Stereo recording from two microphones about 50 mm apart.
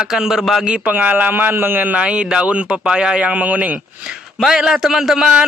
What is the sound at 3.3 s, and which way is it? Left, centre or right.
Speech, right.